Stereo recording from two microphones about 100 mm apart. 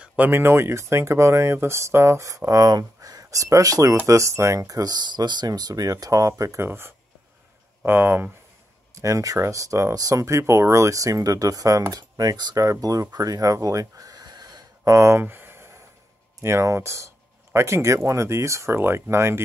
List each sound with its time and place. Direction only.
0.0 s a sound: 10° right (ahead or behind)
0.3 s speech: 25° right (ahead or behind)
8.9 s speech: 30° right (ahead or behind)